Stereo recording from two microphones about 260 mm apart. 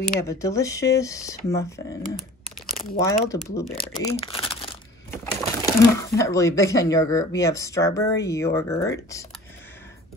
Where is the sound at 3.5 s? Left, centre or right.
Left.